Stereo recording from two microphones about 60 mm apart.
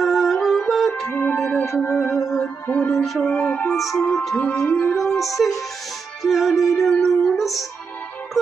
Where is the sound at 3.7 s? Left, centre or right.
Centre.